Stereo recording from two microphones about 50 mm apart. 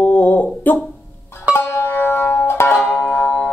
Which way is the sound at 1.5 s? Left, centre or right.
Left.